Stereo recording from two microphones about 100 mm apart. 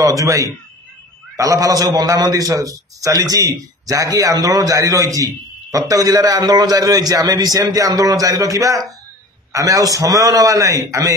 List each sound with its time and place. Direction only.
0.0 s a man's voice: 35° right (ahead or behind)